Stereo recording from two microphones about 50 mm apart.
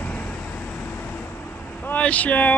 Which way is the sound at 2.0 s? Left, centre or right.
Left.